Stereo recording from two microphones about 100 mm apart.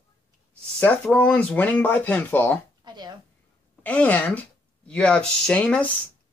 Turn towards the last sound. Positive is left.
turn(degrees=10)  # may be behind; listen again after turning